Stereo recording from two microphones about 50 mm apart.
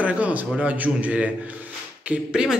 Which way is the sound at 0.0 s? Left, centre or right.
Right.